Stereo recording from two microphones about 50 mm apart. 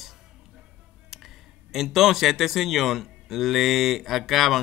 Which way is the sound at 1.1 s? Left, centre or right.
Centre.